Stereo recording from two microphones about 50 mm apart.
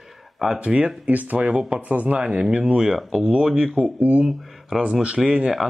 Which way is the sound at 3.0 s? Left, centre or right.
Centre.